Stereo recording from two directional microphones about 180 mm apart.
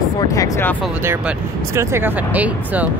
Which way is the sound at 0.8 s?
10° right (ahead or behind).